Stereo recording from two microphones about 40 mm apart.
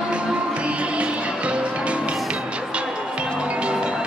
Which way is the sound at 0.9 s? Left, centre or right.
Right.